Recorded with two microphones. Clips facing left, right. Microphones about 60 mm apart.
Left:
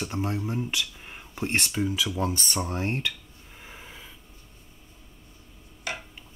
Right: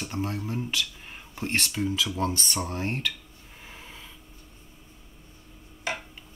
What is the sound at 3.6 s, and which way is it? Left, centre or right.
Snort, centre.